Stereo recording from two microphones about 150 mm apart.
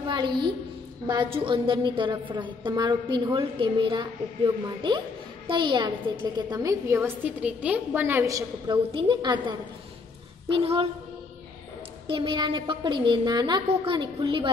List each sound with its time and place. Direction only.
0.0 s a sound: 30° right (ahead or behind)
1.0 s a woman's voice: 35° right (ahead or behind)
5.5 s a woman's voice: 35° right (ahead or behind)
12.1 s a woman's voice: 35° right (ahead or behind)